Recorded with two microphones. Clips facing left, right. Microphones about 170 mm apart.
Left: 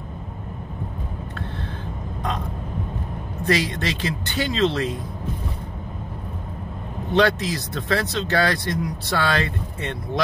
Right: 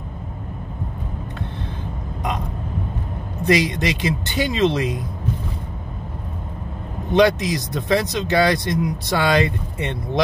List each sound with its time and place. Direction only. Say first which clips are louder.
3.4 s speech: right 4 dB; 15° right (ahead or behind)
7.1 s speech: right 3 dB; 15° right (ahead or behind)